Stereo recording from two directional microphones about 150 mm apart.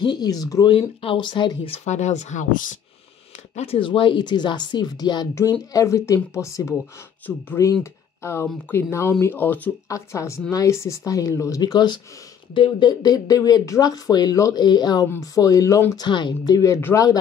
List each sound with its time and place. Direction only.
0.0 s speech: 30° left (ahead or behind)
0.7 s speech: 35° left (ahead or behind)
1.9 s speech: 50° left (ahead or behind)
3.5 s speech: 40° left (ahead or behind); by 17.2 s 25° left (ahead or behind)